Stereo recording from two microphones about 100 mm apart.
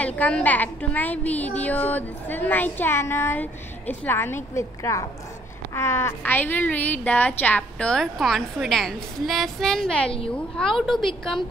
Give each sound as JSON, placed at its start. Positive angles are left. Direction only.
{"t": 0.0, "sound": "a woman's voice", "side_deg": 15}